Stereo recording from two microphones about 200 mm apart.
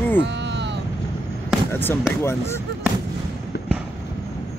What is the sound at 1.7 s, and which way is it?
Speech, 10° left (ahead or behind).